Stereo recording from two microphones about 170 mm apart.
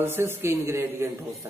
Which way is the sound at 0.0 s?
15° right (ahead or behind).